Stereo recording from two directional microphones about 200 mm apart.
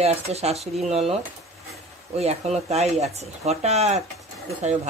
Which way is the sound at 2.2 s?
30° right (ahead or behind).